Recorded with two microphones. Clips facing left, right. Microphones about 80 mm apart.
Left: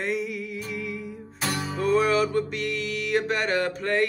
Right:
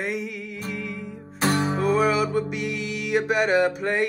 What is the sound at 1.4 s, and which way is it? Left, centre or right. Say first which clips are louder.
Music: right 7 dB; right.